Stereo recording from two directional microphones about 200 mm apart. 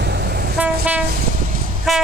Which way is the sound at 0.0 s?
55° right (ahead or behind).